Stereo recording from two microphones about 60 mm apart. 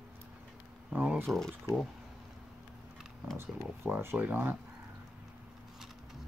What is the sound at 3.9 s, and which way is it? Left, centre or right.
Speech, right.